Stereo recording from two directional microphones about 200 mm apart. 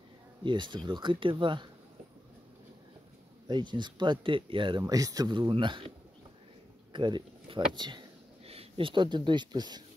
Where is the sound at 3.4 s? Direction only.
20° right (ahead or behind).